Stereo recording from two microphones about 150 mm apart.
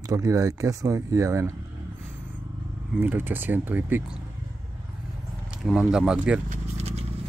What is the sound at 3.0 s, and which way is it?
A man's voice, 15° right (ahead or behind).